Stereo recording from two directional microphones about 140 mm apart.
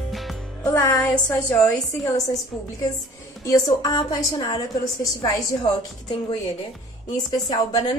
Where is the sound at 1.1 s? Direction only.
5° left (ahead or behind).